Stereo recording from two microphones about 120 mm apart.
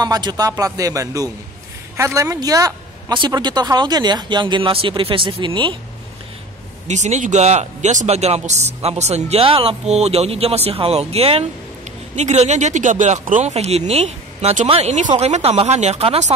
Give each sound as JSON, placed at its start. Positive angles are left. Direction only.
{"t": 0.0, "sound": "speech", "side_deg": -35}
{"t": 6.9, "sound": "speech", "side_deg": -80}
{"t": 12.2, "sound": "speech", "side_deg": -70}
{"t": 13.3, "sound": "speech", "side_deg": -75}
{"t": 14.7, "sound": "speech", "side_deg": -60}